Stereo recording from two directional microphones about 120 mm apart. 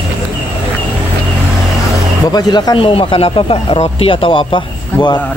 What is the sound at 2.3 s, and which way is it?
Speech, 35° left (ahead or behind).